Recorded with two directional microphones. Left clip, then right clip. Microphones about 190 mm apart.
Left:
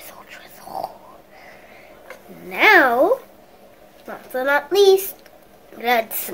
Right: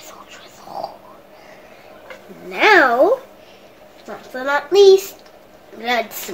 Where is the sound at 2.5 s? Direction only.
20° left (ahead or behind).